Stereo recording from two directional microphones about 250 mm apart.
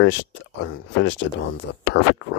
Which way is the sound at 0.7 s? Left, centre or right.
Left.